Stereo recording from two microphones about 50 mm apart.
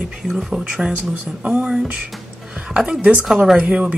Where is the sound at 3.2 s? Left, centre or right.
Centre.